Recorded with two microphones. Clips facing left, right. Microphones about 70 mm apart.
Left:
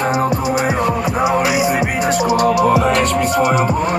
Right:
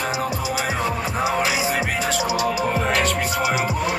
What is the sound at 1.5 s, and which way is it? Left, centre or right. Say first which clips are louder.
Music: left 6 dB; centre.